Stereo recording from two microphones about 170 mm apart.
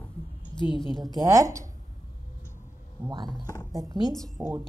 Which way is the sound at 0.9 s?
Centre (ahead or behind).